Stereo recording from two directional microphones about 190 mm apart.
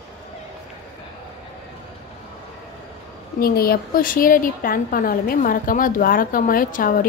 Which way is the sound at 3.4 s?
50° left (ahead or behind).